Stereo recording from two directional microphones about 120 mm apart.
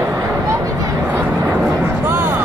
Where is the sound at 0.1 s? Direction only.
25° right (ahead or behind).